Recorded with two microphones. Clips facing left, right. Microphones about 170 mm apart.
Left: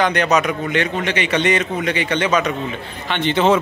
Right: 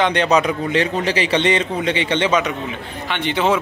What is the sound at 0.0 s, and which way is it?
A man's voice, 25° right (ahead or behind).